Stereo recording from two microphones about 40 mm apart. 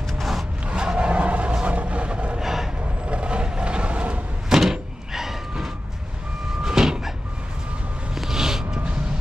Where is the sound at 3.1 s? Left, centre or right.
Right.